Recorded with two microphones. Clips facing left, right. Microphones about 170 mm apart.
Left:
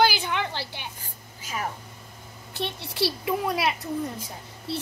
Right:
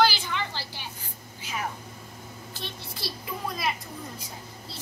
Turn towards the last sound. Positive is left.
turn(degrees=70)  # may be behind; listen again after turning